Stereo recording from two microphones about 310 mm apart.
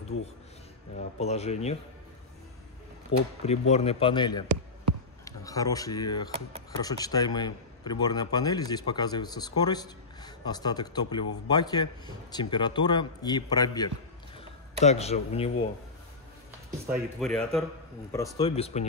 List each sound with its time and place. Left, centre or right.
0.9 s speech: left
3.1 s speech: left
3.4 s speech: left
17.2 s a man's voice: centre
18.4 s speech: centre